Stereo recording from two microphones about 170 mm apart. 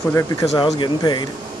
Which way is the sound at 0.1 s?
20° left (ahead or behind).